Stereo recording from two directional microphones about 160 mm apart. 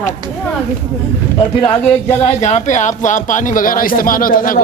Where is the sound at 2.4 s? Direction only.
50° left (ahead or behind).